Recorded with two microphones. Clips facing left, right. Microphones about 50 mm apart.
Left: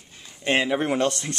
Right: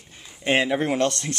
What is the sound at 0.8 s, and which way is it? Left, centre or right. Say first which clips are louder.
Speech: even; centre.